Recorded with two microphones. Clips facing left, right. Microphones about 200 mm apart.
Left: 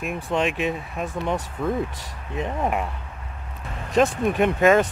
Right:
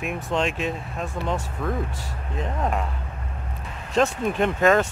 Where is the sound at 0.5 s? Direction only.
60° left (ahead or behind).